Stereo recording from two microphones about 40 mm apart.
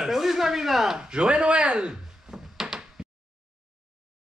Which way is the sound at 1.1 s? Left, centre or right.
Right.